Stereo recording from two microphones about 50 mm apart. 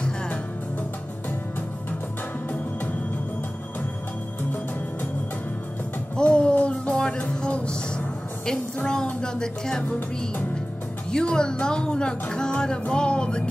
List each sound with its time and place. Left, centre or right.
6.1 s music: centre
9.2 s speech: centre
11.1 s speech: centre
12.9 s music: centre